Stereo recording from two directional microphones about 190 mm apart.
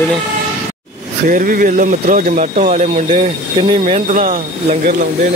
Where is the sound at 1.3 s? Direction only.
45° right (ahead or behind).